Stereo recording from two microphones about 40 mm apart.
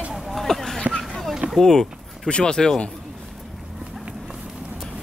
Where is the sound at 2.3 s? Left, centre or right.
Left.